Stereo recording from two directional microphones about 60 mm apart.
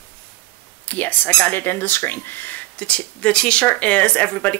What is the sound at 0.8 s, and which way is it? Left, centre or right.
Speech, left.